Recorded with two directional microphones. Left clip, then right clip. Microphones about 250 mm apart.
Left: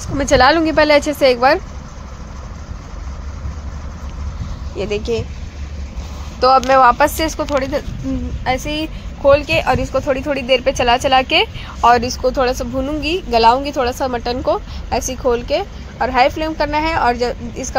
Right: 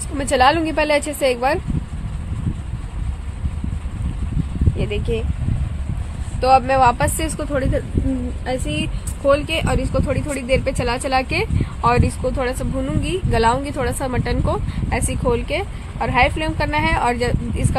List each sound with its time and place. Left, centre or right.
0.2 s speech: centre
4.7 s speech: centre
6.4 s a woman's voice: centre